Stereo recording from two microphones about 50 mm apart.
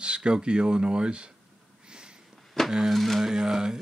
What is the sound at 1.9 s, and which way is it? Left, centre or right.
Sniff, centre.